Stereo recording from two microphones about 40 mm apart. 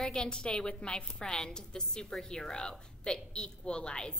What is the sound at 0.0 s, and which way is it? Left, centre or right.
A woman's voice, centre.